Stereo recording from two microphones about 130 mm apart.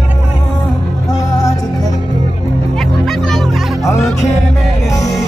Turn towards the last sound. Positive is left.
turn(degrees=5)  # may be behind; listen again after turning